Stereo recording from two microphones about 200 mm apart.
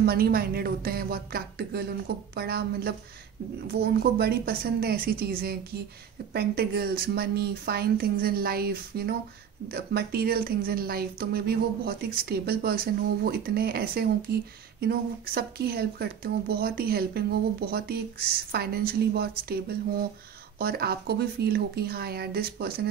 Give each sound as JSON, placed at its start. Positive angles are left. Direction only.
{"t": 0.0, "sound": "speech", "side_deg": -50}